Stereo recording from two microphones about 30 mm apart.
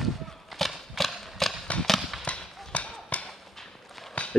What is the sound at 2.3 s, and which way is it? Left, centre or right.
Clip-clop, left.